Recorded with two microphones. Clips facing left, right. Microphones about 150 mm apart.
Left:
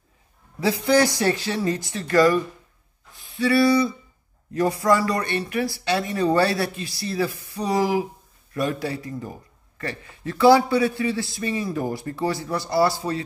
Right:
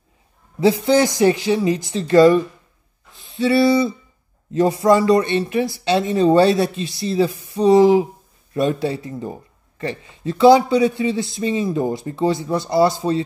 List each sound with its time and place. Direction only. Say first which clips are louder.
0.6 s speech: right 4 dB; 25° right (ahead or behind)
3.2 s a sound: right 3 dB; 25° right (ahead or behind)
4.5 s speech: right 5 dB; 25° right (ahead or behind)